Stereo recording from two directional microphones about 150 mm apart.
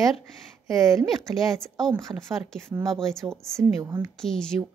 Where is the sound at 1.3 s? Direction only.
5° left (ahead or behind).